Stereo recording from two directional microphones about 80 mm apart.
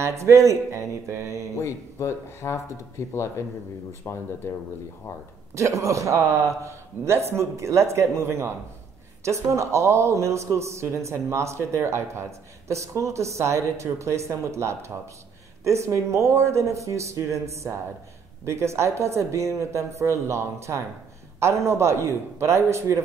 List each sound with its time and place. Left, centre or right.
0.0 s a man's voice: right
1.6 s speech: left
4.0 s speech: left
5.6 s a man's voice: right